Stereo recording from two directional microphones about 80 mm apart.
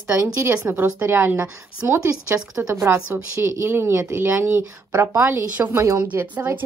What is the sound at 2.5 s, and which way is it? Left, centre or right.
A woman's voice, right.